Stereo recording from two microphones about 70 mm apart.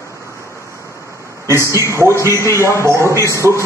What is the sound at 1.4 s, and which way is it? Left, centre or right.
A man's voice, right.